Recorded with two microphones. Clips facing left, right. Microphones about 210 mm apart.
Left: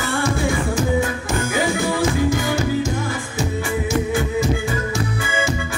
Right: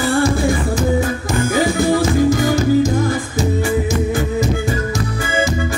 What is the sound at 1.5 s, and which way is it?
Music, 40° right (ahead or behind).